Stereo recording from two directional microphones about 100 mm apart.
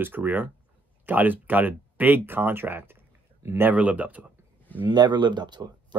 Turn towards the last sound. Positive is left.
turn(degrees=-45)  # may be behind; listen again after turning